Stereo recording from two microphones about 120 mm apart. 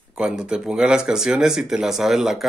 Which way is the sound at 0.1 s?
5° right (ahead or behind).